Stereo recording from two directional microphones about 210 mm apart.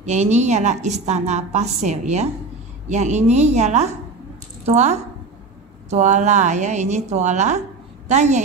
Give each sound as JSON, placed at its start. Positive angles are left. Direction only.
{"t": 0.0, "sound": "a woman's voice", "side_deg": -35}